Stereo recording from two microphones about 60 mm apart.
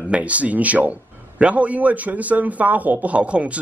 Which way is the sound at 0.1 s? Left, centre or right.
Right.